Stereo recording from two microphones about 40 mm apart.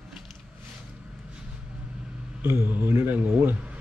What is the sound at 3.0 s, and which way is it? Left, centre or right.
Speech, right.